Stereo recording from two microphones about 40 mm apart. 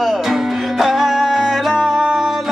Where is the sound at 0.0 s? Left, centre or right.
Centre.